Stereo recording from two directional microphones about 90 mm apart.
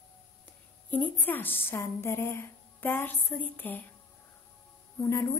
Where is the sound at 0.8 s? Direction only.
20° left (ahead or behind).